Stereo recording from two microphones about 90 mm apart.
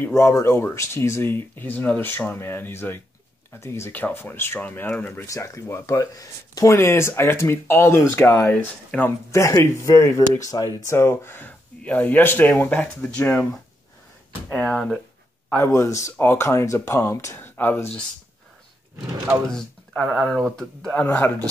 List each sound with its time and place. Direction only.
0.1 s speech: 35° left (ahead or behind); by 5.2 s 15° left (ahead or behind)
5.2 s speech: 35° left (ahead or behind); by 9.1 s 20° left (ahead or behind)
9.3 s speech: 30° left (ahead or behind)
10.9 s speech: 30° left (ahead or behind)
12.8 s speech: 10° left (ahead or behind)
13.2 s speech: 20° left (ahead or behind)
14.5 s speech: 5° left (ahead or behind)
15.5 s speech: 30° left (ahead or behind)
17.4 s speech: 20° left (ahead or behind)
19.5 s speech: 5° left (ahead or behind)
21.0 s speech: 25° left (ahead or behind)